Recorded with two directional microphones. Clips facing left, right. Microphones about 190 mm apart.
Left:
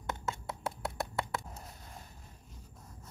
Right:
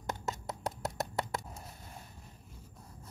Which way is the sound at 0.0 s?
40° right (ahead or behind).